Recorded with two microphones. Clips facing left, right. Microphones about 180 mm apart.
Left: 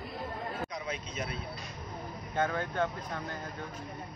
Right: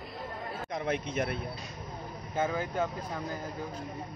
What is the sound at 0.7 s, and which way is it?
Speech, 55° right (ahead or behind).